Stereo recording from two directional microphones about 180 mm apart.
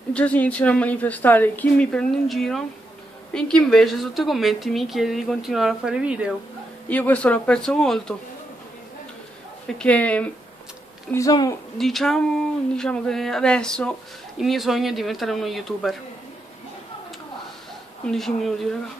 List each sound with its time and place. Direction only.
0.1 s a woman's voice: 10° left (ahead or behind)
6.9 s a woman's voice: 10° left (ahead or behind)
9.7 s a woman's voice: 5° left (ahead or behind)
11.1 s speech: 20° left (ahead or behind)
11.8 s a woman's voice: centre (ahead or behind)
18.0 s a woman's voice: centre (ahead or behind)